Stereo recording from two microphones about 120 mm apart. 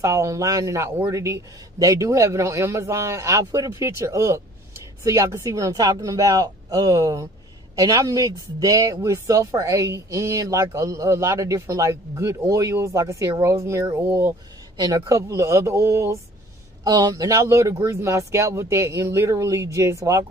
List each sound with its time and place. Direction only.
0.0 s speech: 25° right (ahead or behind)